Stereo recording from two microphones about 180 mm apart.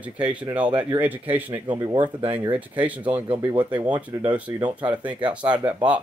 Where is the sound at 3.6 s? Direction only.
10° right (ahead or behind).